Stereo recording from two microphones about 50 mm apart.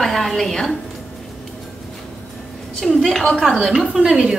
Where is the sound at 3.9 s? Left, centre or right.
Centre.